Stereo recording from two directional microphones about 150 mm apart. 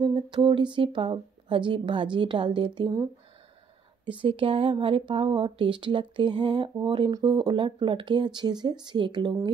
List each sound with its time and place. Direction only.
0.0 s speech: 30° right (ahead or behind)
4.2 s speech: 35° right (ahead or behind)